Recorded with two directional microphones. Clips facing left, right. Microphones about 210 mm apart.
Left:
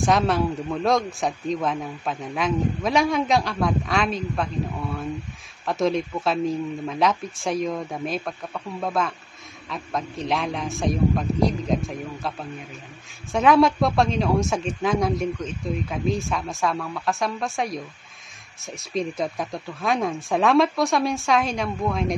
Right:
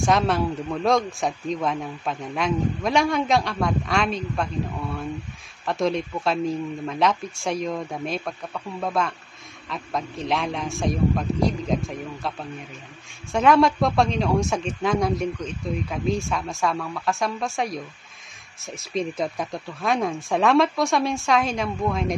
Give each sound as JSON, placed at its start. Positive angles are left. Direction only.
{"t": 0.0, "sound": "speech", "side_deg": 0}